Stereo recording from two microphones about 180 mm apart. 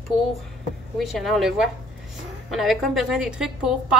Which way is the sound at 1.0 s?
Centre (ahead or behind).